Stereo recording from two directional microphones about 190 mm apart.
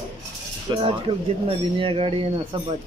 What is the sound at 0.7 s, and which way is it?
Speech, 30° right (ahead or behind).